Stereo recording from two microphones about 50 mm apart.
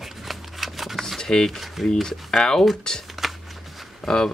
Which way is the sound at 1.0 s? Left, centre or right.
Centre.